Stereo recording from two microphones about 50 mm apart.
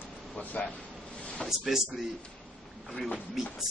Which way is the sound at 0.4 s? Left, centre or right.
Left.